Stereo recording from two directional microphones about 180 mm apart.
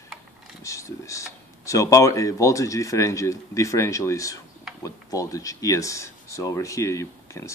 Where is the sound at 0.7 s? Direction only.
15° left (ahead or behind).